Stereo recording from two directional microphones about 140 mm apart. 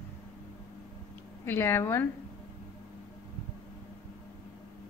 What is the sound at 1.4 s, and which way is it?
Speech, 20° left (ahead or behind).